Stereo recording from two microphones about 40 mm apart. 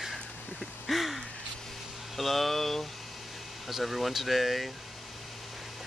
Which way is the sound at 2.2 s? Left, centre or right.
Centre.